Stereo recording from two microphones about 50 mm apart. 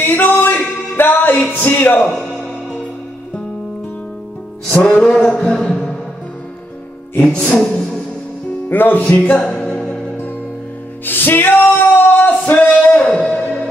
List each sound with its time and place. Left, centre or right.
0.0 s music: left
1.6 s a man's voice: left
2.0 s a man's voice: centre
4.6 s music: left
4.9 s a man's voice: centre
5.6 s music: centre
7.2 s music: left
8.6 s music: left
9.1 s a man's voice: left
9.5 s music: centre
11.1 s music: left
12.9 s music: left